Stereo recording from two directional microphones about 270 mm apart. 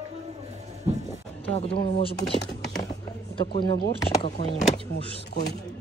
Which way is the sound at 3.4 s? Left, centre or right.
Centre.